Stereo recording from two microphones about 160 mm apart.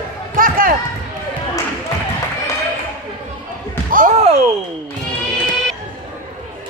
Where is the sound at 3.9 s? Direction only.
55° right (ahead or behind).